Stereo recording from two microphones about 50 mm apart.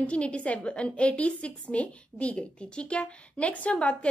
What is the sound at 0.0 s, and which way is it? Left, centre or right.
A woman's voice, left.